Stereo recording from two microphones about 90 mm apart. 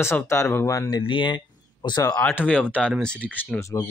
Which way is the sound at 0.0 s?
30° left (ahead or behind).